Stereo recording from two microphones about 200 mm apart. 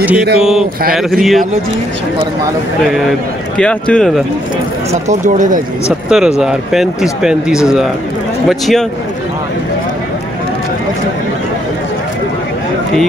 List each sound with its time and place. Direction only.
0.0 s mantra: 5° right (ahead or behind)
0.4 s speech: 5° right (ahead or behind)
2.9 s speech: centre (ahead or behind)
5.0 s speech: 40° right (ahead or behind)
6.0 s speech: 5° right (ahead or behind)